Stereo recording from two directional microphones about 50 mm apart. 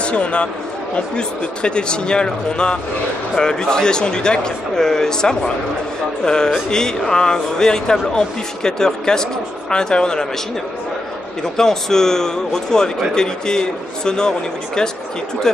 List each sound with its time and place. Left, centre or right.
0.0 s a man's voice: left
11.5 s a man's voice: centre
15.5 s speech: centre